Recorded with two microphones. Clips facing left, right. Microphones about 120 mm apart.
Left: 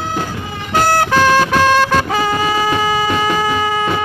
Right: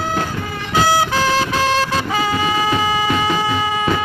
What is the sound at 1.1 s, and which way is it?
Music, 55° left (ahead or behind).